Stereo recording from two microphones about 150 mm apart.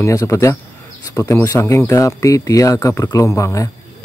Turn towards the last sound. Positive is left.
turn(degrees=20)  # may be behind; listen again after turning